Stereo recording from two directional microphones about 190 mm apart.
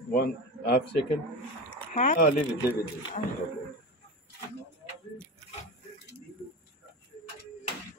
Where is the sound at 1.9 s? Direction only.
40° left (ahead or behind).